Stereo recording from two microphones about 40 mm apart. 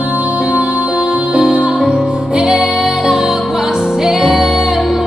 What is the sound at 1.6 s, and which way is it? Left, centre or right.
Music, right.